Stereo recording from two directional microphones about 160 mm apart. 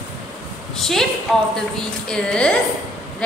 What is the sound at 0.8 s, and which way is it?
Speech, centre (ahead or behind).